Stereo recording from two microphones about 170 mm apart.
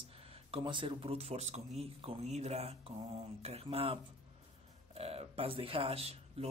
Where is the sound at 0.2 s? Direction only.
35° right (ahead or behind).